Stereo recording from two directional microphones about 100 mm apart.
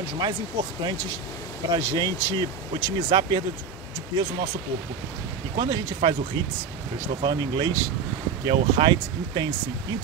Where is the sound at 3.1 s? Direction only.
50° right (ahead or behind).